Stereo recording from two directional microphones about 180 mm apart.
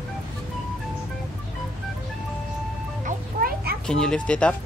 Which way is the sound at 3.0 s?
55° right (ahead or behind).